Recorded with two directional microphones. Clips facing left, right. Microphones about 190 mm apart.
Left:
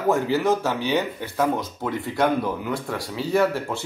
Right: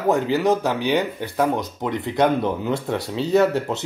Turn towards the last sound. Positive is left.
turn(degrees=-20)  # may be behind; listen again after turning